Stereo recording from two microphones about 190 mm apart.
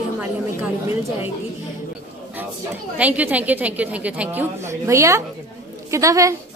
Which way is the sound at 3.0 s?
10° right (ahead or behind).